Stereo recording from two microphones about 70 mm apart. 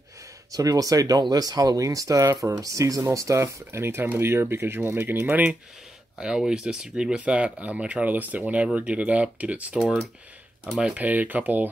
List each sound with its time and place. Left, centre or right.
0.5 s speech: right
2.2 s speech: right
2.6 s speech: right
6.1 s speech: centre
10.8 s speech: centre